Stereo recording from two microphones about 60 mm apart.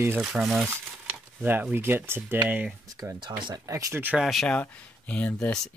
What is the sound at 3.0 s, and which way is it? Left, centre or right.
Speech, right.